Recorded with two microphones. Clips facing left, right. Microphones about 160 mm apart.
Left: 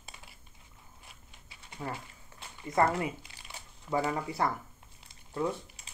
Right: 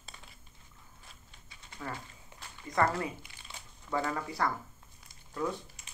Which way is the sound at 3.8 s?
15° left (ahead or behind).